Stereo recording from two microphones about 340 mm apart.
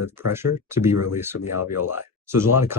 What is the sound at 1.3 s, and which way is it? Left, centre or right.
Speech, left.